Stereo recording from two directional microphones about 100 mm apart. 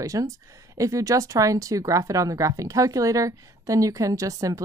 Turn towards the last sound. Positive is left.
turn(degrees=-35)  # may be behind; listen again after turning